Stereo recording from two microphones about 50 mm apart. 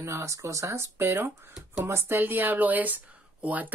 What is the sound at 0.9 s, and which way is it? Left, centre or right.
Speech, right.